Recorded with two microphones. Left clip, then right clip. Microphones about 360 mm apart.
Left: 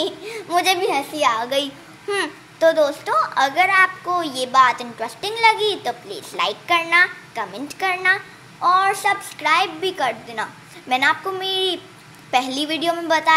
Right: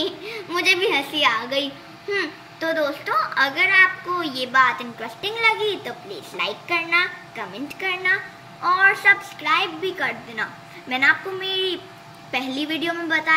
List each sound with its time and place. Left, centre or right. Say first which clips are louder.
0.0 s a woman's voice: left 2 dB; centre